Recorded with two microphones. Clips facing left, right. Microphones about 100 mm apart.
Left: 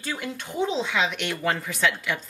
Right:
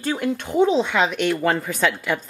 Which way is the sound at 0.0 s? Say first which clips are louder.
Right 9 dB; 50° right (ahead or behind).